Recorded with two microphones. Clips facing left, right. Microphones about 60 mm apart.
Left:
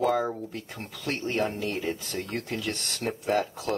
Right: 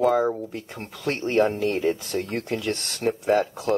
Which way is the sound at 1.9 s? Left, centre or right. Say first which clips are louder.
Right 7 dB; centre.